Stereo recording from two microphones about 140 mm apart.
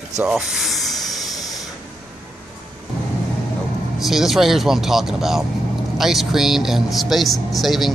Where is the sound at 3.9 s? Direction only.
Centre (ahead or behind).